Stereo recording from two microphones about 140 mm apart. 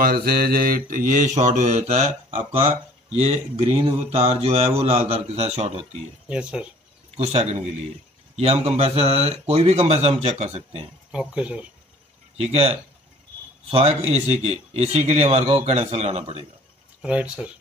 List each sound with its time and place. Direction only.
0.0 s mantra: 90° right; by 2.7 s 45° right (ahead or behind)
3.2 s a man's voice: 45° right (ahead or behind)
6.2 s speech: 10° right (ahead or behind)
7.2 s a man's voice: 50° right (ahead or behind)
11.1 s speech: 5° right (ahead or behind)
12.4 s a man's voice: 50° right (ahead or behind)
17.0 s speech: 10° right (ahead or behind)